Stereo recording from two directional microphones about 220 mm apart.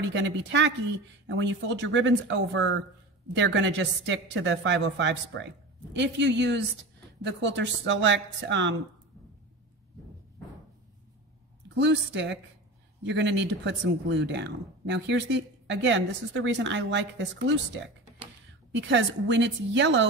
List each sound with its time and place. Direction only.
0.1 s speech: 55° right (ahead or behind)
11.8 s speech: 55° right (ahead or behind)